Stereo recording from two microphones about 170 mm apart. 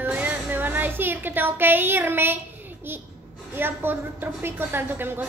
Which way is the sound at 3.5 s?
10° right (ahead or behind).